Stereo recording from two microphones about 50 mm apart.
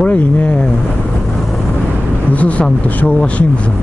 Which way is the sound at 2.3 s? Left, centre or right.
Left.